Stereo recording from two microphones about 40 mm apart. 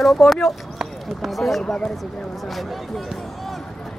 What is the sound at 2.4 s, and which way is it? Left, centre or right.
Speech, centre.